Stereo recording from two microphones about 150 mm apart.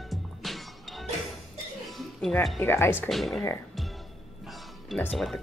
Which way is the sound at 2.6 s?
15° left (ahead or behind).